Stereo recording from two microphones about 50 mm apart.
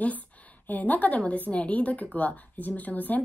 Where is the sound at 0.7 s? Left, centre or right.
Left.